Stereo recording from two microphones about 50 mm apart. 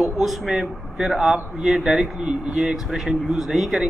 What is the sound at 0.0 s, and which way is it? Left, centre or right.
A man's voice, centre.